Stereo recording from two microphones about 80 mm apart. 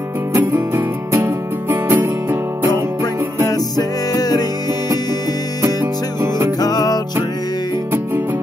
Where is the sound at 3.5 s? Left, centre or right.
Left.